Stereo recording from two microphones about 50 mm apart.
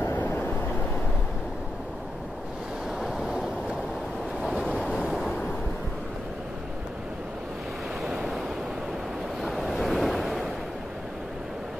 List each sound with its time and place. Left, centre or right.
0.1 s vehicle: left
3.0 s waves: centre
4.6 s waves: centre
8.0 s waves: centre